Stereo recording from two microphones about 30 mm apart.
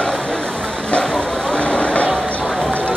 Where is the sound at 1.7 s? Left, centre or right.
Left.